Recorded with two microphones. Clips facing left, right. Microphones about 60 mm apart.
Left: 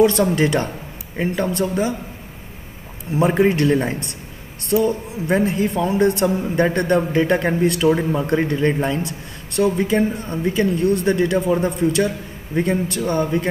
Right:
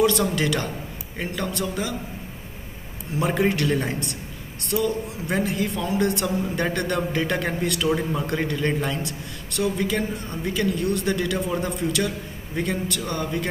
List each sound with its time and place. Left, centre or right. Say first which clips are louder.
0.0 s speech: left 5 dB; left
3.2 s a woman's voice: left 6 dB; left